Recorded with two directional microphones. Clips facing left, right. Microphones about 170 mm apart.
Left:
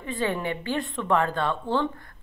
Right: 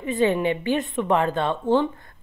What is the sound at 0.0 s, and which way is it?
A woman's voice, 20° right (ahead or behind).